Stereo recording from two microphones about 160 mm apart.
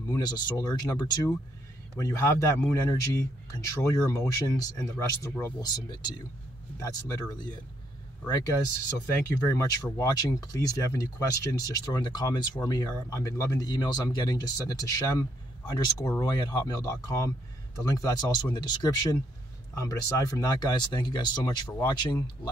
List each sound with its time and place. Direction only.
0.1 s speech: 25° left (ahead or behind)
9.6 s speech: 20° left (ahead or behind)